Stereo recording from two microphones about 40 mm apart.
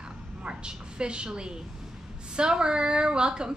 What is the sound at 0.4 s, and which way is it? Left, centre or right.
A woman's voice, right.